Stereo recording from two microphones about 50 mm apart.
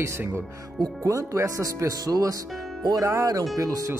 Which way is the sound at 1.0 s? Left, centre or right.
Right.